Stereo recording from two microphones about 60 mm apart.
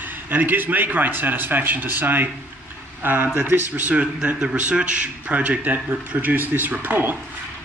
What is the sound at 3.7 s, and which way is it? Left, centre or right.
Speech, right.